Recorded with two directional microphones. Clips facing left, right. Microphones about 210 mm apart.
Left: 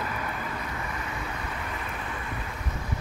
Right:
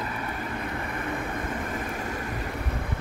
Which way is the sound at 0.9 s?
55° right (ahead or behind).